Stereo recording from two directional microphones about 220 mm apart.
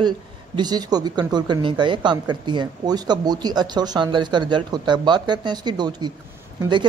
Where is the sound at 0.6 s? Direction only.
20° right (ahead or behind).